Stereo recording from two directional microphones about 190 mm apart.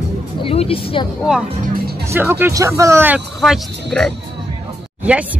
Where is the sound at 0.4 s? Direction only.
30° left (ahead or behind).